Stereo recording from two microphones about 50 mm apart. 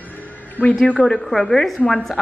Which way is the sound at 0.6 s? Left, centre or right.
Right.